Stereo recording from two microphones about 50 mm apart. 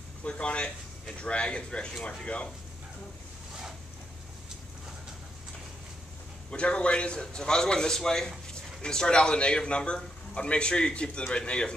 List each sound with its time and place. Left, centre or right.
0.2 s a man's voice: left
6.5 s a man's voice: left